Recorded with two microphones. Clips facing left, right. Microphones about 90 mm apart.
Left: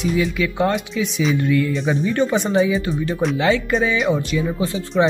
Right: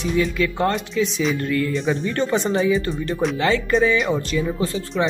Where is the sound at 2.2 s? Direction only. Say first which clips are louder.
Left 2 dB; 15° left (ahead or behind).